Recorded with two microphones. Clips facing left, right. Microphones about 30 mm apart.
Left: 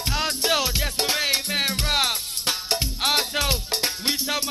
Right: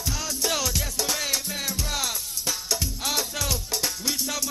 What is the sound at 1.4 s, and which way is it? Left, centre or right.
Music, left.